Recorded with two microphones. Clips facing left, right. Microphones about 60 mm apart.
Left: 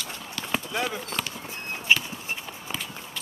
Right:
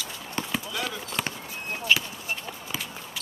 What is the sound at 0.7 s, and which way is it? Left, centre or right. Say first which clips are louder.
Clip-clop: left 4 dB; left.